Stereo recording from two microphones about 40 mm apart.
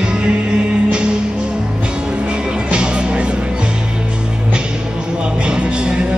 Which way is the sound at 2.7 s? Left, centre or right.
Right.